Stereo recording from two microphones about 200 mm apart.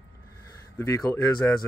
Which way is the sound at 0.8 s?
15° left (ahead or behind).